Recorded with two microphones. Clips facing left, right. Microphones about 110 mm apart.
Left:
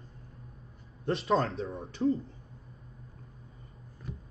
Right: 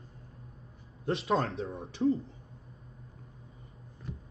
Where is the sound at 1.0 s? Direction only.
Centre (ahead or behind).